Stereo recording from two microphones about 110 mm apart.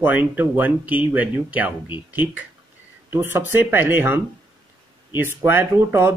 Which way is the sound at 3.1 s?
20° right (ahead or behind).